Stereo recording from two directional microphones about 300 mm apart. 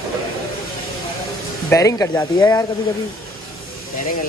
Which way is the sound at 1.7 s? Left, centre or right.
Centre.